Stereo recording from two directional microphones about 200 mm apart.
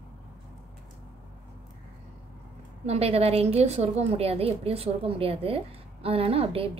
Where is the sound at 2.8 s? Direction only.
30° right (ahead or behind).